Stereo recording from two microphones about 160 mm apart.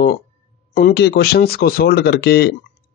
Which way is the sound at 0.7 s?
75° left (ahead or behind).